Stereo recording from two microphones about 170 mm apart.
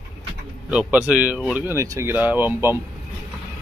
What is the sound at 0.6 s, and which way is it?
Speech, 5° right (ahead or behind).